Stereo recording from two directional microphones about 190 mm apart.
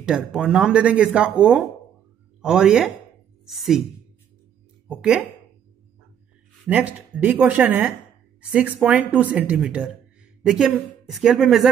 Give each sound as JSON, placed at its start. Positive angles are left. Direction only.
{"t": 0.0, "sound": "speech", "side_deg": -5}
{"t": 4.8, "sound": "speech", "side_deg": -5}
{"t": 6.7, "sound": "speech", "side_deg": -10}